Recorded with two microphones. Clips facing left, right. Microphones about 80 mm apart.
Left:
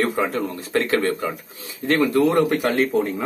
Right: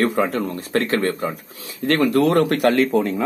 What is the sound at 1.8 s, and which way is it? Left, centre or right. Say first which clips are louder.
Speech: right 1 dB; right.